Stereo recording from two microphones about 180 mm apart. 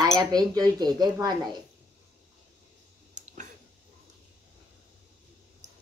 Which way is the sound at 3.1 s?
45° right (ahead or behind).